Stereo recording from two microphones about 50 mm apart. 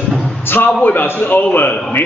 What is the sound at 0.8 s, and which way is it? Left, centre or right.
Speech, left.